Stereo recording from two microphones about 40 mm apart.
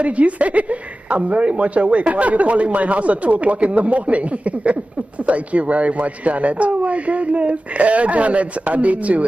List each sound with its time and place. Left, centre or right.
0.0 s a woman's voice: right